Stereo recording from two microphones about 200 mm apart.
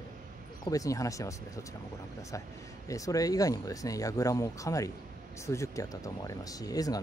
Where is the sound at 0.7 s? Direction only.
15° left (ahead or behind).